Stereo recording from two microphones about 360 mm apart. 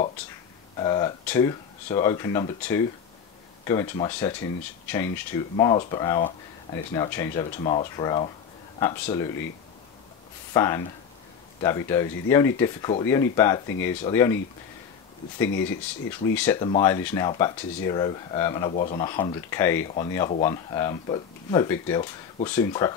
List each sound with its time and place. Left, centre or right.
0.7 s speech: centre
10.5 s speech: centre
15.5 s speech: left
16.3 s speech: centre